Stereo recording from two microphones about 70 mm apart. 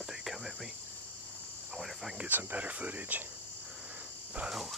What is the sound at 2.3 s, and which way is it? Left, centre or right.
Speech, right.